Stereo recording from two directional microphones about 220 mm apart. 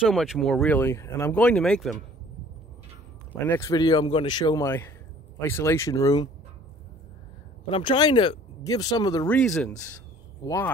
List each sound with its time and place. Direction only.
0.0 s speech: centre (ahead or behind)
3.4 s speech: 10° left (ahead or behind)
7.7 s speech: 25° left (ahead or behind)
9.3 s speech: 5° left (ahead or behind)